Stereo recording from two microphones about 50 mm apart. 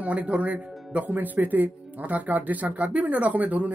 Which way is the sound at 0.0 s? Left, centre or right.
Right.